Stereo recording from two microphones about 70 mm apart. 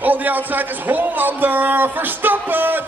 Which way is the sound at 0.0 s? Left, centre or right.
Right.